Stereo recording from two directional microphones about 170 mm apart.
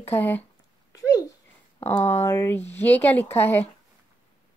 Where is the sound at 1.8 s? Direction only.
10° left (ahead or behind).